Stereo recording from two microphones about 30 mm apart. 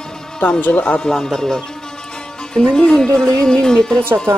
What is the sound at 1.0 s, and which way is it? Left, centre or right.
Speech, centre.